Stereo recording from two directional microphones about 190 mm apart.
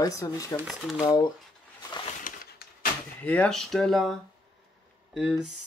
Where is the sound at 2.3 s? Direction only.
45° left (ahead or behind).